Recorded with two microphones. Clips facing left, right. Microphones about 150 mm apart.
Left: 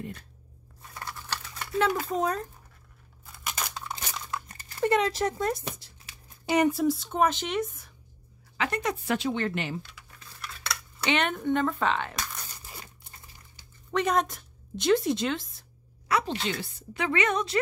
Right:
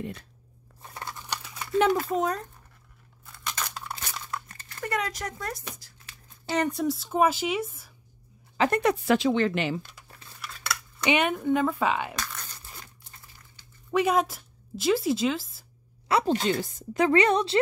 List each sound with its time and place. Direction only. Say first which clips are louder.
0.9 s a sound: right 1 dB; 15° right (ahead or behind)
2.0 s speech: right 1 dB; centre (ahead or behind)
3.3 s a sound: even; 10° left (ahead or behind)
3.9 s crumpling: even; 20° left (ahead or behind)
4.8 s speech: left 7 dB; 25° left (ahead or behind)
5.9 s speech: even; 15° left (ahead or behind); by 7.9 s 5° right (ahead or behind)
8.5 s a woman's voice: right 6 dB; 45° right (ahead or behind)
8.8 s a woman's voice: right 5 dB; 90° right
10.4 s cutlery: right 2 dB; 5° right (ahead or behind)
12.2 s crumpling: even; 10° left (ahead or behind)
13.9 s a woman's voice: right 2 dB; 5° right (ahead or behind)
16.3 s speech: right 7 dB; 45° right (ahead or behind)